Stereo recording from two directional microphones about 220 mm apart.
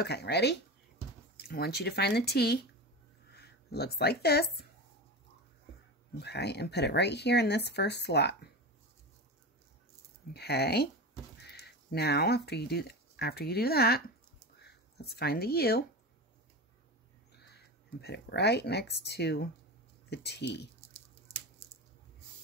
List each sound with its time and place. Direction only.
0.0 s speech: 50° left (ahead or behind)
6.1 s speech: 50° left (ahead or behind)
10.3 s speech: 45° left (ahead or behind)
18.0 s speech: 50° left (ahead or behind)